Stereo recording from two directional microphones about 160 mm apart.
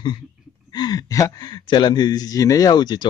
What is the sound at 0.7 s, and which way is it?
Speech, 25° left (ahead or behind).